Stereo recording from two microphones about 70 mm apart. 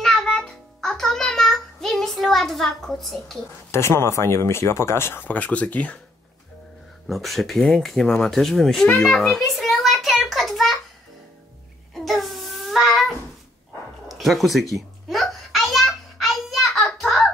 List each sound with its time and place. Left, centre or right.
0.0 s music: centre
3.7 s speech: left
7.1 s speech: centre
9.2 s a sound: centre
10.2 s child singing: centre
11.9 s a sound: centre
14.0 s babbling: centre